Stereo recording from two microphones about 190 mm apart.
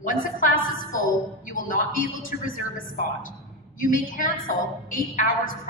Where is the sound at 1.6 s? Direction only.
45° left (ahead or behind).